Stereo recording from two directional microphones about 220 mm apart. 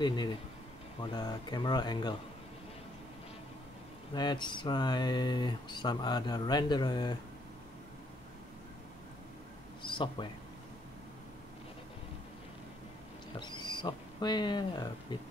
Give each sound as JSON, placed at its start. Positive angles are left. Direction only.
{"t": 0.0, "sound": "speech", "side_deg": 20}
{"t": 4.1, "sound": "speech", "side_deg": 20}
{"t": 9.8, "sound": "speech", "side_deg": 20}
{"t": 13.4, "sound": "speech", "side_deg": 20}